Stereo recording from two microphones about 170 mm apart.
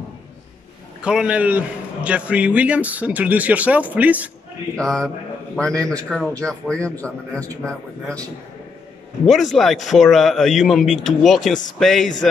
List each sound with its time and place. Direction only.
1.0 s speech: 5° right (ahead or behind)
4.7 s speech: 5° left (ahead or behind)
7.3 s a man's voice: 20° right (ahead or behind)
9.2 s speech: centre (ahead or behind)